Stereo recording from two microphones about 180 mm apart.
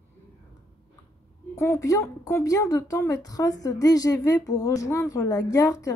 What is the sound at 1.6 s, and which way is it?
Speech, 15° left (ahead or behind).